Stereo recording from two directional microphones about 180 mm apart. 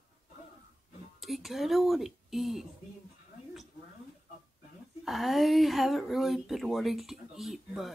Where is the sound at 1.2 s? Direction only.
Centre (ahead or behind).